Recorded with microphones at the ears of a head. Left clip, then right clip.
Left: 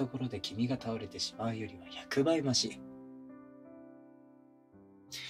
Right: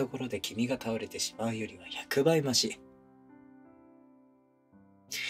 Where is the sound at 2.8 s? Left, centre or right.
Left.